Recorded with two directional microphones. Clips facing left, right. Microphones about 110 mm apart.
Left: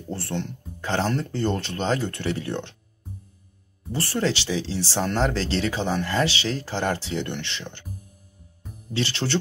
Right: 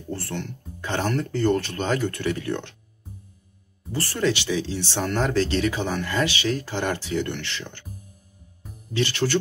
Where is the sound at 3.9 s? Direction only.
25° left (ahead or behind).